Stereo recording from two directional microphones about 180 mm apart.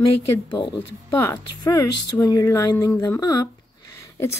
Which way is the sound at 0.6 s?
20° left (ahead or behind).